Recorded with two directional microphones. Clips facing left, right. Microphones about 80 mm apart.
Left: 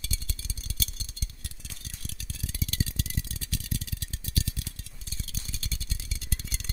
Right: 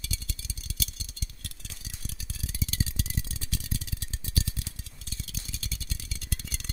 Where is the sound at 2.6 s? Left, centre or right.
Centre.